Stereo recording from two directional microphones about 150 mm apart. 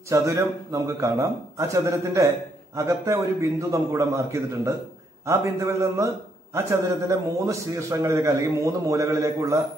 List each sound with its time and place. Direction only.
0.1 s a man's voice: 20° right (ahead or behind)